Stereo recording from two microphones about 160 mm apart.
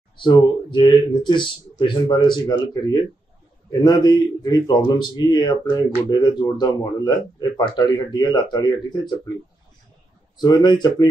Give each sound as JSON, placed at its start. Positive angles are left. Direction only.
{"t": 0.2, "sound": "a man's voice", "side_deg": 30}
{"t": 10.3, "sound": "a man's voice", "side_deg": 25}